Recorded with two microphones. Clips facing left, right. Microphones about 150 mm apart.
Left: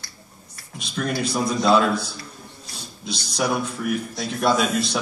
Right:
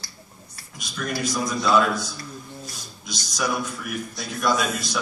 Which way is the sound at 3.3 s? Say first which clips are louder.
Left 3 dB; 30° left (ahead or behind).